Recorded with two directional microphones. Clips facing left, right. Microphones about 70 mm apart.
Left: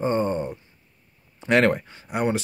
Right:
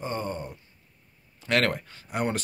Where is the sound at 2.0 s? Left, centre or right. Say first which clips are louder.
Left 4 dB; centre.